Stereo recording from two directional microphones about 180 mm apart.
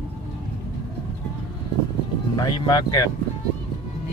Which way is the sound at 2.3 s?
25° left (ahead or behind).